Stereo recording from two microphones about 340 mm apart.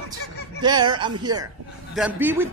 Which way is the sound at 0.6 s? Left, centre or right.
Centre.